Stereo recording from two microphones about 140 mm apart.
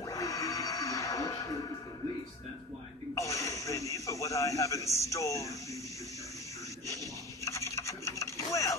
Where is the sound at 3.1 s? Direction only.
20° left (ahead or behind).